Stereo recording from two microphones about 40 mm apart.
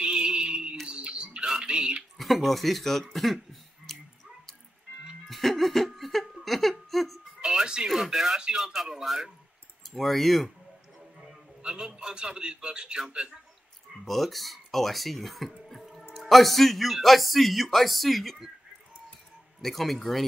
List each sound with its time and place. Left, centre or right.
0.0 s a sound: right
0.8 s music: right
1.5 s bird: right
2.1 s speech: centre
5.3 s music: centre
5.9 s laughter: centre
7.4 s music: centre
7.9 s speech: centre
9.8 s speech: centre
11.6 s a man's voice: right
14.0 s speech: centre
19.6 s speech: centre